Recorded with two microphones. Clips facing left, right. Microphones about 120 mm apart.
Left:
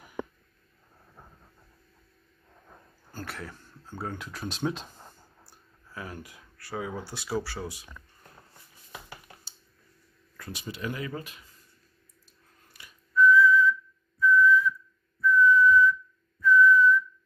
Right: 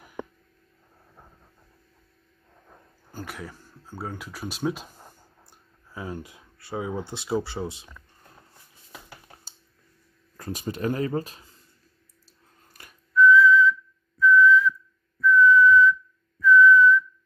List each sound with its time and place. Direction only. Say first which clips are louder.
3.1 s speech: right 2 dB; 15° right (ahead or behind)
5.5 s speech: right 2 dB; 20° right (ahead or behind)
10.3 s speech: right 7 dB; 40° right (ahead or behind)
12.7 s whistling: right 3 dB; 45° right (ahead or behind)
13.1 s whistling: right 3 dB; 90° right
14.2 s whistle: right 4 dB; 90° right
15.1 s whistling: right 4 dB; 90° right